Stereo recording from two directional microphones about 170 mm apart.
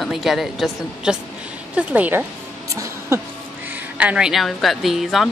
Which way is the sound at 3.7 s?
10° right (ahead or behind).